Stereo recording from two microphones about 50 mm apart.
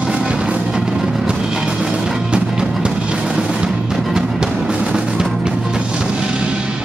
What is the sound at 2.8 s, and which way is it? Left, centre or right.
Music, centre.